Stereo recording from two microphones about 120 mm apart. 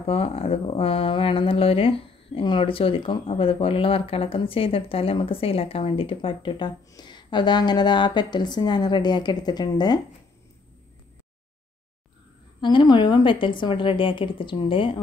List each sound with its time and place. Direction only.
0.0 s a woman's voice: 55° left (ahead or behind); by 9.9 s 35° left (ahead or behind)
12.5 s speech: 40° left (ahead or behind)